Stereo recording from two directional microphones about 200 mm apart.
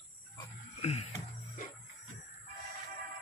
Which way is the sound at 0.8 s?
35° left (ahead or behind).